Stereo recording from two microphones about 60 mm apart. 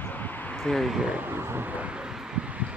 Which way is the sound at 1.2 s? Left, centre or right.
Right.